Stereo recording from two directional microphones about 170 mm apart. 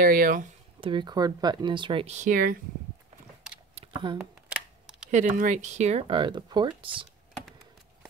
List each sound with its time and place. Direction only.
0.0 s speech: 55° right (ahead or behind)
0.7 s speech: 30° right (ahead or behind); by 2.6 s 55° right (ahead or behind)
3.7 s a sound: 30° right (ahead or behind)
5.1 s speech: 50° right (ahead or behind); by 7.1 s 30° right (ahead or behind)